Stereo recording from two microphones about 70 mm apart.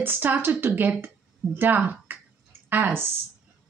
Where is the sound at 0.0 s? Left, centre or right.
Right.